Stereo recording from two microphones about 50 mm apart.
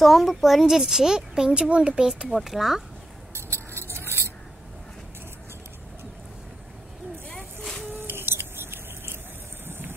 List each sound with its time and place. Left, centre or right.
0.0 s speech: centre
3.7 s keys jangling: right
7.9 s a sound: right